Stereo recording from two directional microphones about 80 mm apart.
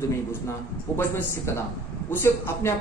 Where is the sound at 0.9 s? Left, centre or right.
Left.